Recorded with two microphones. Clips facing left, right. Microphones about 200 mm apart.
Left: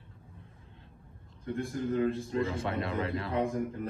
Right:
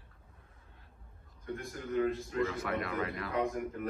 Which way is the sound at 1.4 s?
30° left (ahead or behind).